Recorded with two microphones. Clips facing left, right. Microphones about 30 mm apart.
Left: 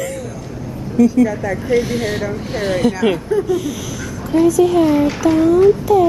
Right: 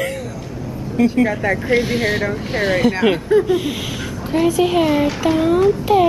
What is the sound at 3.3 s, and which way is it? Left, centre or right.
Speech, right.